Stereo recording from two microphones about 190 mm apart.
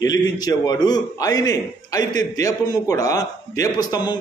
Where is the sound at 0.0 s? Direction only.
20° left (ahead or behind).